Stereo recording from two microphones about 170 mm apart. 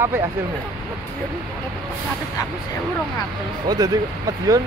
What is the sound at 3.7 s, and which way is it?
Speech, 25° right (ahead or behind).